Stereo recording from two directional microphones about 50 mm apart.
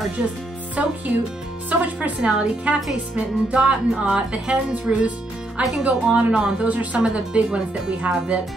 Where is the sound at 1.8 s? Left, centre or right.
Right.